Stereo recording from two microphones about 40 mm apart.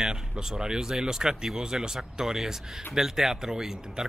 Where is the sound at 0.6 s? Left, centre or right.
Centre.